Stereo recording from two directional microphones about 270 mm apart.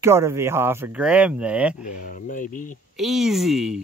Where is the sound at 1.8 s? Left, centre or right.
Left.